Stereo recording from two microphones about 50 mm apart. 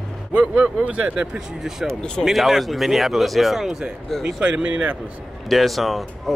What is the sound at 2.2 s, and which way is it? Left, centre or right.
Speech, centre.